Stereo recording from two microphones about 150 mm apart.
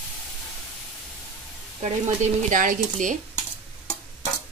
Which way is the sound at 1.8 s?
55° right (ahead or behind).